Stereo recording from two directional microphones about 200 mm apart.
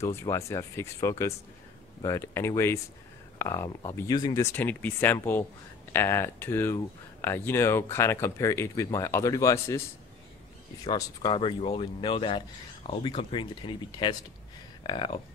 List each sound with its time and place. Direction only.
0.0 s speech: 15° left (ahead or behind)